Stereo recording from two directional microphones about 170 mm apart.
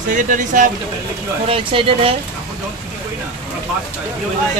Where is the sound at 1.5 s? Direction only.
30° right (ahead or behind).